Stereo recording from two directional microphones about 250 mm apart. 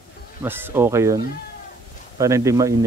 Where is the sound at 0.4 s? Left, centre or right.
Centre.